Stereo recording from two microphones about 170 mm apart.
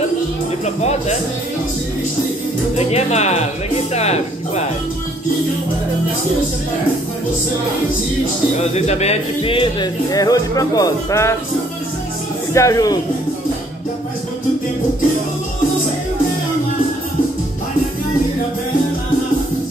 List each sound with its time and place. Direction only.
2.7 s speech: 40° left (ahead or behind)
8.5 s speech: 40° left (ahead or behind); by 11.3 s 20° left (ahead or behind)
12.5 s speech: 20° left (ahead or behind)